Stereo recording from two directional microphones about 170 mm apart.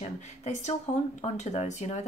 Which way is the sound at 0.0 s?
40° left (ahead or behind).